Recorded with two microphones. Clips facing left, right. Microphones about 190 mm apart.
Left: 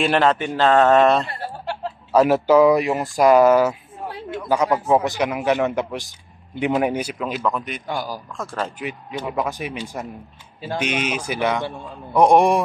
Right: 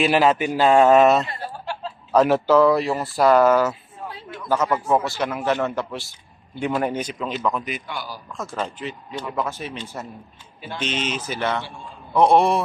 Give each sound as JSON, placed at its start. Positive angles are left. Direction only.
{"t": 0.0, "sound": "a man's voice", "side_deg": -5}
{"t": 2.1, "sound": "a man's voice", "side_deg": 10}
{"t": 7.8, "sound": "a man's voice", "side_deg": 45}
{"t": 8.4, "sound": "a man's voice", "side_deg": 0}